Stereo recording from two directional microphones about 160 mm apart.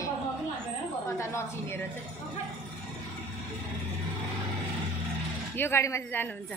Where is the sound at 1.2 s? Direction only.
15° left (ahead or behind).